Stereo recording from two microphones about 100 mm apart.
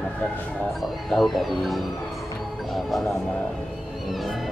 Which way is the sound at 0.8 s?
Centre (ahead or behind).